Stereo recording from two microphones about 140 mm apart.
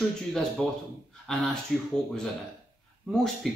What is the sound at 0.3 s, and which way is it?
Speech, 5° left (ahead or behind).